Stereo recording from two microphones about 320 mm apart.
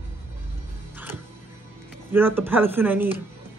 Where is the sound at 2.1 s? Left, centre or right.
Centre.